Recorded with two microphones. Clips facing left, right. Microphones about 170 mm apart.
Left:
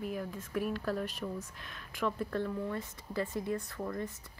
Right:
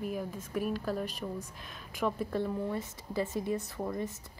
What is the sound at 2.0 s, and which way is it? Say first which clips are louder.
A woman's voice: right 2 dB; 15° right (ahead or behind).